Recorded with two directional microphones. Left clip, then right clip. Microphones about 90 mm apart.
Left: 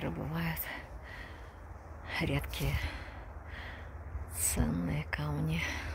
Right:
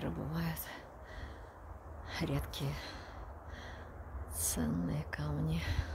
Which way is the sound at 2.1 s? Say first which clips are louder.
Left 4 dB; 5° left (ahead or behind).